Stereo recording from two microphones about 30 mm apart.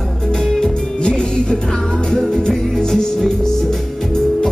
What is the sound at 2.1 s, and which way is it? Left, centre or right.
Music, centre.